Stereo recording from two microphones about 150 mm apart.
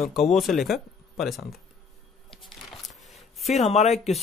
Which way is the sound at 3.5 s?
45° left (ahead or behind).